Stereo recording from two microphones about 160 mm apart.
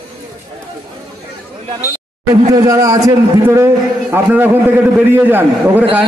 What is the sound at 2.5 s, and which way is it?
A man's voice, 20° right (ahead or behind).